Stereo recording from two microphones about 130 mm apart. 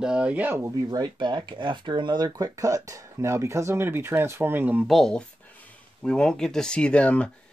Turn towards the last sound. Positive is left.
turn(degrees=10)  # may be behind; listen again after turning